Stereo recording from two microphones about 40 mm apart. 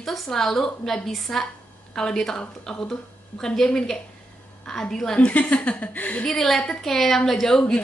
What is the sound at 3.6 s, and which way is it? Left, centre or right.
A woman's voice, centre.